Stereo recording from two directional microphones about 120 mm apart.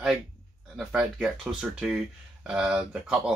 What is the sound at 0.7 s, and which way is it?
Speech, 5° right (ahead or behind).